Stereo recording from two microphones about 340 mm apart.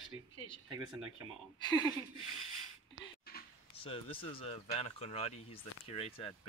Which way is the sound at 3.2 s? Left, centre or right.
Left.